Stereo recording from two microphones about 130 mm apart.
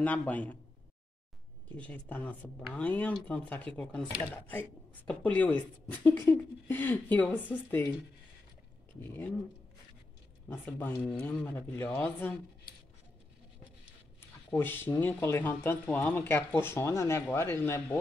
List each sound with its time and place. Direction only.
0.0 s speech: 10° left (ahead or behind)
1.8 s speech: 15° left (ahead or behind)
9.0 s speech: 15° left (ahead or behind)
10.5 s speech: 15° left (ahead or behind)
14.5 s speech: 15° left (ahead or behind)